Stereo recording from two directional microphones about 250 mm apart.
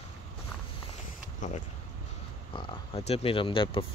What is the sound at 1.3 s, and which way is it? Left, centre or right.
Speech, left.